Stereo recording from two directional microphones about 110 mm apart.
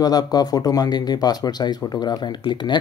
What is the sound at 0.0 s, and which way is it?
Speech, 35° left (ahead or behind).